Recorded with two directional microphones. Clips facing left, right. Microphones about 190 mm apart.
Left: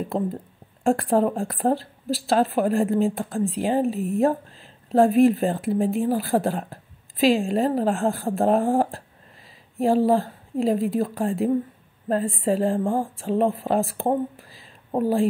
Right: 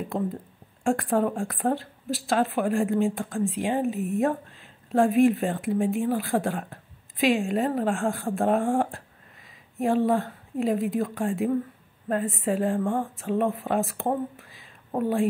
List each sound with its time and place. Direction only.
0.8 s a woman's voice: 35° left (ahead or behind)